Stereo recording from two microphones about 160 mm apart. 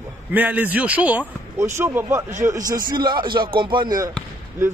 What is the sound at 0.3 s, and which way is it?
A man's voice, 10° right (ahead or behind).